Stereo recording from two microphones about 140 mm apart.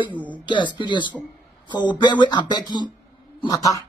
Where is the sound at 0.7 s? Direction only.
35° left (ahead or behind).